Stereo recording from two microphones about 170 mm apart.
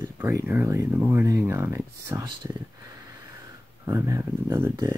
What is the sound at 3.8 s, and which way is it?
Speech, 20° right (ahead or behind).